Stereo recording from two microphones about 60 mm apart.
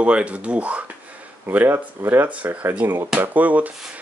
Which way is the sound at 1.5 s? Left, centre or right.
Right.